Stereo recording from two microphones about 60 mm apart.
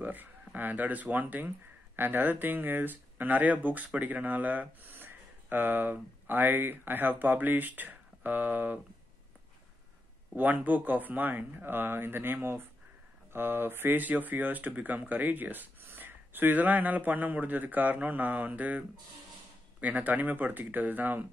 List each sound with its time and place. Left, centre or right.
0.0 s speech: right
10.3 s speech: right